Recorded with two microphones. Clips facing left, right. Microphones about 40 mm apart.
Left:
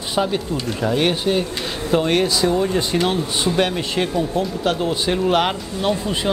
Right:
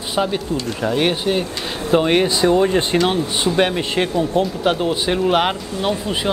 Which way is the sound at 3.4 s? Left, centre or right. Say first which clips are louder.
Right 2 dB; centre.